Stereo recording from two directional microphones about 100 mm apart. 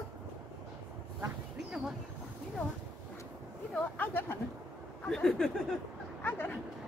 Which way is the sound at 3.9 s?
20° left (ahead or behind).